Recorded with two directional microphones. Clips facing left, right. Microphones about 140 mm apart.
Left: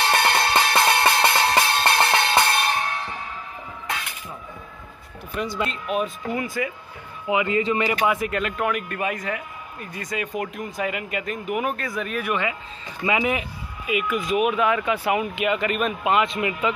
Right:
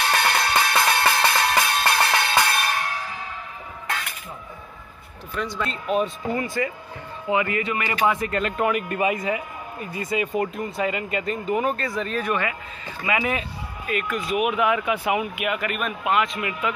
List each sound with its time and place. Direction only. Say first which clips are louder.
0.0 s music: left 2 dB; 25° left (ahead or behind)
5.4 s speech: left 1 dB; 10° left (ahead or behind)
7.2 s speech: left 2 dB; 20° left (ahead or behind)
8.1 s speech: even; centre (ahead or behind)
14.3 s speech: left 1 dB; 15° right (ahead or behind)